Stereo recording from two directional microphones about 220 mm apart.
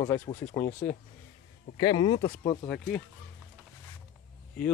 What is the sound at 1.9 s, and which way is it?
Speech, 75° left (ahead or behind).